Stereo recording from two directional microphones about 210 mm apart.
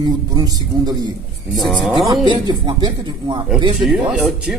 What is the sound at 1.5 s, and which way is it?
Speech, centre (ahead or behind).